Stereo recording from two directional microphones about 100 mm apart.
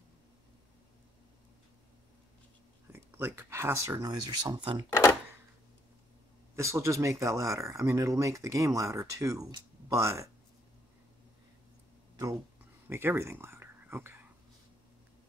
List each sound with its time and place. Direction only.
2.9 s speech: 25° right (ahead or behind); by 4.6 s 45° right (ahead or behind)
4.8 s cash register: 25° left (ahead or behind)
6.5 s speech: 30° right (ahead or behind)
12.8 s speech: 20° right (ahead or behind)